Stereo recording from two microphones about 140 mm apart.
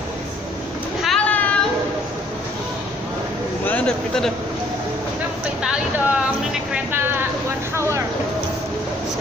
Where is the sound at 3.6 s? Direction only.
10° left (ahead or behind).